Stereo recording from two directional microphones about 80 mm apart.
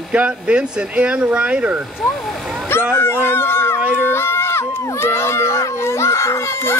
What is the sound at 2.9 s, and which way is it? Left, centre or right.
Speech, left.